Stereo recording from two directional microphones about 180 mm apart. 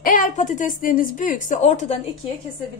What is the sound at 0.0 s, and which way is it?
A woman's voice, 50° left (ahead or behind).